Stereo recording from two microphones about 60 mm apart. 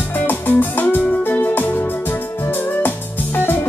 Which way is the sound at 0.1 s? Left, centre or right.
Left.